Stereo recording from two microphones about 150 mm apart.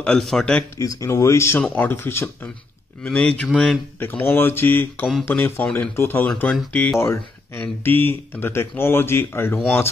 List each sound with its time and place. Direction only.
0.0 s a man's voice: 5° left (ahead or behind)
1.0 s speech: 20° left (ahead or behind); by 3.8 s centre (ahead or behind)
4.0 s speech: 15° left (ahead or behind)